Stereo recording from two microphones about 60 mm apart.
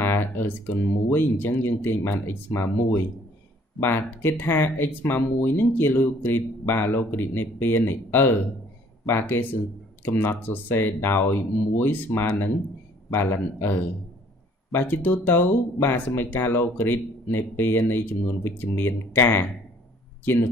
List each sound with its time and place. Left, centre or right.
0.0 s speech: left